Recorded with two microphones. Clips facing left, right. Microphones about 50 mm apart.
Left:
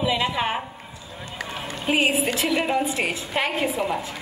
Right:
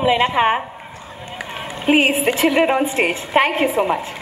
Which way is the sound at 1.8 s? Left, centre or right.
Right.